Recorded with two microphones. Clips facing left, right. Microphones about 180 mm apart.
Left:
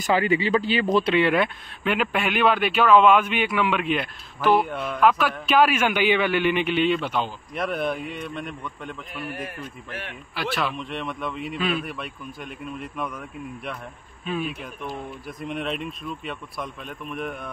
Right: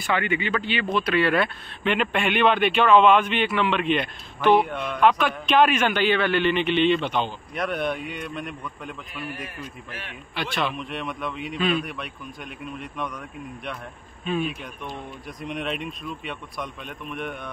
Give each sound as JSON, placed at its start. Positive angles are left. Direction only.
{"t": 0.0, "sound": "speech", "side_deg": 35}
{"t": 1.1, "sound": "speech", "side_deg": 15}
{"t": 9.4, "sound": "a man's voice", "side_deg": 55}
{"t": 10.3, "sound": "speech", "side_deg": 5}
{"t": 14.2, "sound": "speech", "side_deg": 5}